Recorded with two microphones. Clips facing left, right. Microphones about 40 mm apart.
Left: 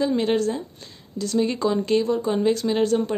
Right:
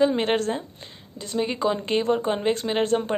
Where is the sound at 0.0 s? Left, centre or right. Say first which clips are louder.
Even; right.